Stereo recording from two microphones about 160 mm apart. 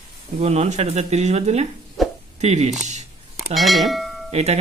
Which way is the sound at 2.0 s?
Centre (ahead or behind).